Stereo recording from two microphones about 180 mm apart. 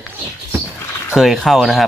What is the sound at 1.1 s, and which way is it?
Speech, centre (ahead or behind).